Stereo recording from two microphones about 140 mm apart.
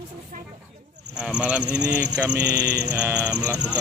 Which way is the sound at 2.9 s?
25° right (ahead or behind).